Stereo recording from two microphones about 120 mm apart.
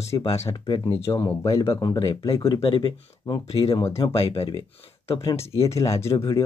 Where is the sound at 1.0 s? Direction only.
20° left (ahead or behind).